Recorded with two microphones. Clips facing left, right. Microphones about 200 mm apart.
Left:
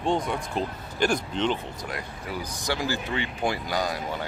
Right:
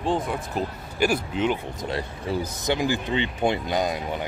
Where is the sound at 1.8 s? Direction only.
30° right (ahead or behind).